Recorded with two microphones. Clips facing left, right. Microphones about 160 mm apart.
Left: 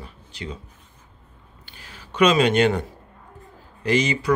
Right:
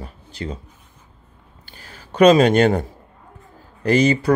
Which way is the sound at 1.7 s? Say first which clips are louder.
Right 3 dB; 40° right (ahead or behind).